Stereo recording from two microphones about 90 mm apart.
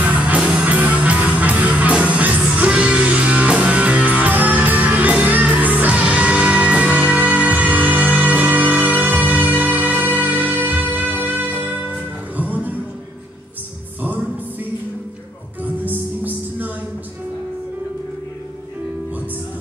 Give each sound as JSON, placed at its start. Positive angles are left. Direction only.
{"t": 0.0, "sound": "music", "side_deg": -15}
{"t": 14.0, "sound": "music", "side_deg": -20}